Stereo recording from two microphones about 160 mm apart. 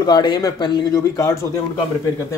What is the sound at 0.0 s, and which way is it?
Speech, 25° left (ahead or behind).